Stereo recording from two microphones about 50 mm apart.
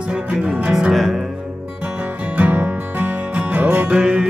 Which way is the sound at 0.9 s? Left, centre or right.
Centre.